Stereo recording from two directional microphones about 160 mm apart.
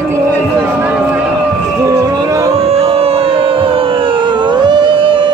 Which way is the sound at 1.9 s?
20° right (ahead or behind).